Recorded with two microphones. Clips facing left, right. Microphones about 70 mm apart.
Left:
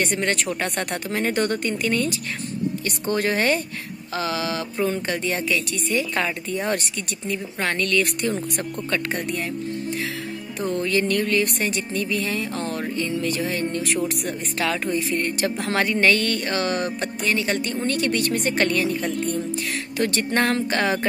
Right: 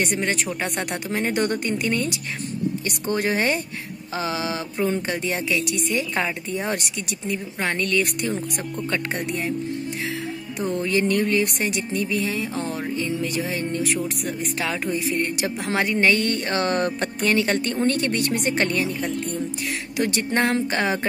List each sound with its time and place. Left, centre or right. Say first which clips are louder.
0.0 s a woman's voice: left 1 dB; centre
8.9 s speech: left 2 dB; right
10.6 s a woman's voice: even; centre
13.8 s speech: left 1 dB; centre
14.6 s a woman's voice: left 3 dB; centre
20.0 s speech: even; centre